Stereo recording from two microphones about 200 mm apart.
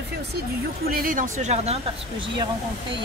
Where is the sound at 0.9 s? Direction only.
45° right (ahead or behind).